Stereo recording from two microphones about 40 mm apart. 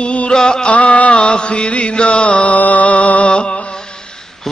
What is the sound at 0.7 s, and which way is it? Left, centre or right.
Music, left.